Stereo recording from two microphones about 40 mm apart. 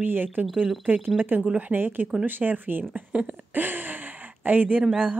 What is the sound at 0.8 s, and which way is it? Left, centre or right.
Speech, right.